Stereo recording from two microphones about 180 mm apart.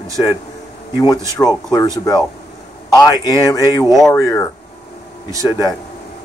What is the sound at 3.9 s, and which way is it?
Speech, centre (ahead or behind).